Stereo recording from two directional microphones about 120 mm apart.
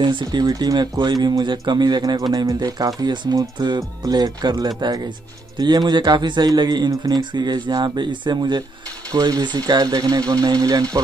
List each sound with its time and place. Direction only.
0.0 s speech: 40° right (ahead or behind)